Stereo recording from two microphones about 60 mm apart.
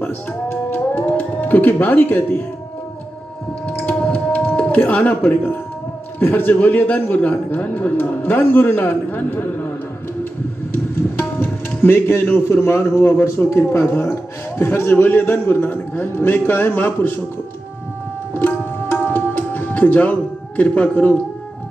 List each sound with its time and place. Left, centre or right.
0.5 s music: left
1.0 s speech: left
3.6 s typing: centre
6.1 s a man's voice: left
11.4 s speech: left
13.5 s speech: left
14.6 s a man's voice: left
18.3 s tabla: left